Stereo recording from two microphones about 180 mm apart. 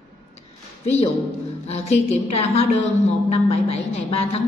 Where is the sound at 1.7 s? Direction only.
35° left (ahead or behind).